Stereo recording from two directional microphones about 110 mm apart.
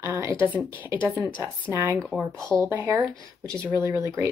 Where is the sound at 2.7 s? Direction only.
15° right (ahead or behind).